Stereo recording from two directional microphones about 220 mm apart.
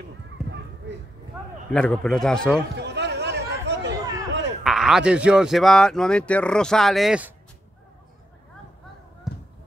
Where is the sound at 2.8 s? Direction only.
50° right (ahead or behind).